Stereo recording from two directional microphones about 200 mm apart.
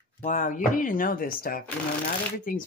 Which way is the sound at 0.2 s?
40° left (ahead or behind).